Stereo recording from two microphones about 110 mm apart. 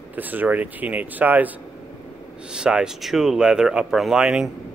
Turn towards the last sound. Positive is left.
turn(degrees=-5)  # may be behind; listen again after turning